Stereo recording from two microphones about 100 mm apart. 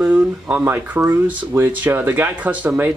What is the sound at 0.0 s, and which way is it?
Speech, 20° right (ahead or behind).